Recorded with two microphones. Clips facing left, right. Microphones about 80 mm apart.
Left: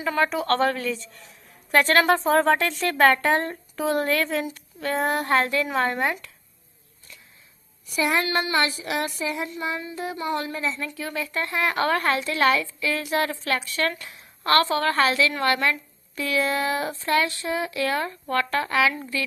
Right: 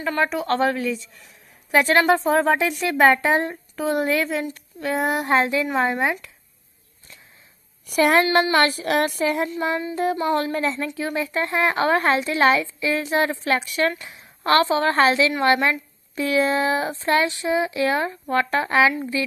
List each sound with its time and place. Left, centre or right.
0.0 s a woman's voice: centre
5.1 s speech: centre
5.9 s a woman's voice: centre
7.8 s a woman's voice: right
9.5 s speech: right
10.9 s a woman's voice: right